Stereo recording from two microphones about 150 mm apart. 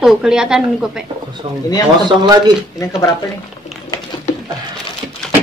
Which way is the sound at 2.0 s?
30° right (ahead or behind).